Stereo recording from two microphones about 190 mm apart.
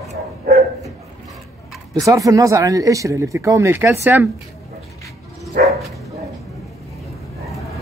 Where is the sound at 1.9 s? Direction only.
15° right (ahead or behind).